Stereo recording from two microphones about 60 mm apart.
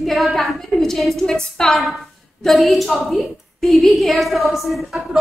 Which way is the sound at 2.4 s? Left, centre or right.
Centre.